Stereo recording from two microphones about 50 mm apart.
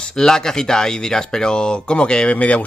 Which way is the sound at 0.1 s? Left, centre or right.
Centre.